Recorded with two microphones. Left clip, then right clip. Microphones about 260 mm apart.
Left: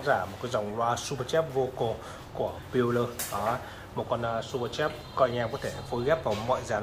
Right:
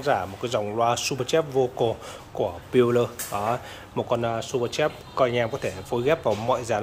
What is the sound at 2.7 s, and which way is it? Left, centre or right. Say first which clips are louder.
Speech: right 7 dB; right.